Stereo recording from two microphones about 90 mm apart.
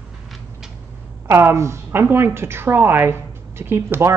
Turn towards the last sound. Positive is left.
turn(degrees=-25)  # may be behind; listen again after turning